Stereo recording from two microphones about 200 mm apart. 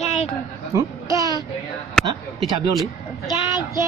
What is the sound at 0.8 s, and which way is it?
Speech, 15° right (ahead or behind).